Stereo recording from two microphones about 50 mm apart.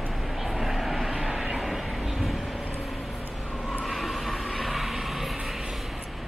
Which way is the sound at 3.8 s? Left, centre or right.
Centre.